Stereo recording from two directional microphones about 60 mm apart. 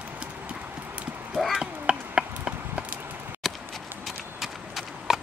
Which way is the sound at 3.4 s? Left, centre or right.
Centre.